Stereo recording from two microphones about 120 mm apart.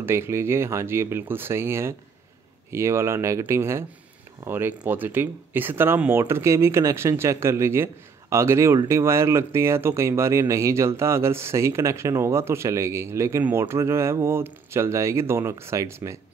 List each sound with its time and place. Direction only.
0.0 s speech: 20° right (ahead or behind)